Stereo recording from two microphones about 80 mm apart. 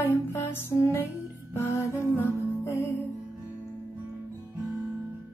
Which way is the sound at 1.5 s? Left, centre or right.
Left.